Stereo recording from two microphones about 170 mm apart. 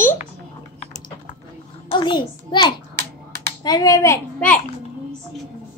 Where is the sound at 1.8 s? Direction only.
30° left (ahead or behind).